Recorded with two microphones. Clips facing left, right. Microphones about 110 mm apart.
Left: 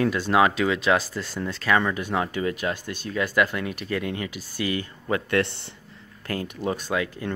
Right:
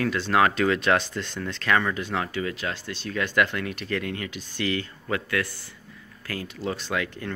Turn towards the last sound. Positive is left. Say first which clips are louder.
# left 2 dB
turn(degrees=20)  # may be behind; listen again after turning